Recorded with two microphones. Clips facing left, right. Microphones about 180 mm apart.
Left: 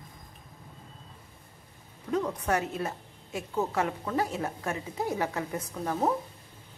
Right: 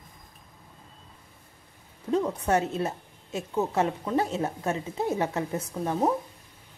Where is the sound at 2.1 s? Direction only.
25° right (ahead or behind).